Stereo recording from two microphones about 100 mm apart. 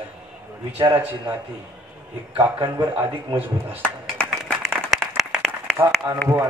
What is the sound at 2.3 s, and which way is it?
A man's voice, 20° right (ahead or behind).